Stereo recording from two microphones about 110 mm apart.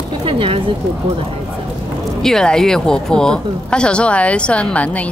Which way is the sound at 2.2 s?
5° left (ahead or behind).